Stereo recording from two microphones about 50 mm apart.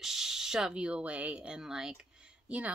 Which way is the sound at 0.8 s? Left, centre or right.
Right.